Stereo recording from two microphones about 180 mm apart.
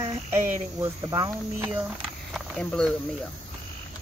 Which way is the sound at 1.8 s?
Centre (ahead or behind).